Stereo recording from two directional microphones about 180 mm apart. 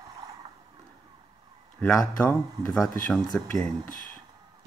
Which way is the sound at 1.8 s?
5° left (ahead or behind).